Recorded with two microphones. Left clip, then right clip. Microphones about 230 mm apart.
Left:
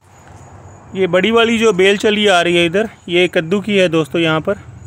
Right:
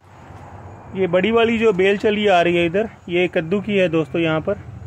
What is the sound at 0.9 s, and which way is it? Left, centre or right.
A man's voice, left.